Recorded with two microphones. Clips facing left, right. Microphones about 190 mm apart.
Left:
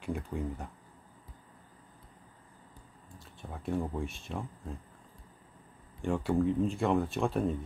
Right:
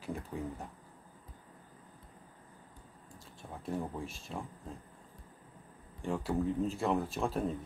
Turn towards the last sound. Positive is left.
turn(degrees=0)  # may be behind; listen again after turning